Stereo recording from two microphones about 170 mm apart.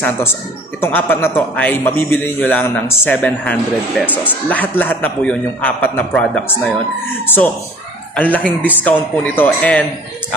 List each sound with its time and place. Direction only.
0.7 s a man's voice: 10° left (ahead or behind)
8.2 s a man's voice: 10° left (ahead or behind)